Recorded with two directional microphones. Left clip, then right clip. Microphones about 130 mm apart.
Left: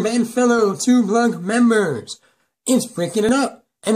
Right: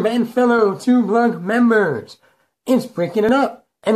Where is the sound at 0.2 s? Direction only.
30° left (ahead or behind).